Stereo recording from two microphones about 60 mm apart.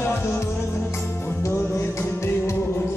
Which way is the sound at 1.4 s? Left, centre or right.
Left.